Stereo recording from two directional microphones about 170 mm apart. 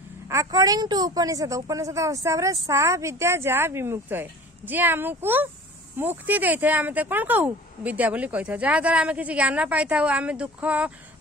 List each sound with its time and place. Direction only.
0.3 s a woman's voice: 20° right (ahead or behind)